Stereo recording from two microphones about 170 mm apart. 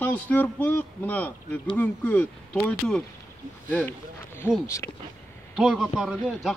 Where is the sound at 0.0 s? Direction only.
10° left (ahead or behind).